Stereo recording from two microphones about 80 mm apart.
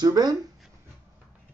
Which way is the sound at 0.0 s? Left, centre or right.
Right.